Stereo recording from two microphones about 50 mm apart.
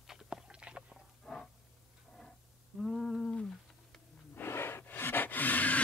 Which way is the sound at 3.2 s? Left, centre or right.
Centre.